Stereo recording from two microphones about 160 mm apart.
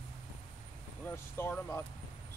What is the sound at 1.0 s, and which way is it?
Speech, 15° left (ahead or behind).